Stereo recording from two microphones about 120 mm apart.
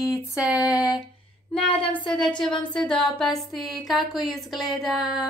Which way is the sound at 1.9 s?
5° left (ahead or behind).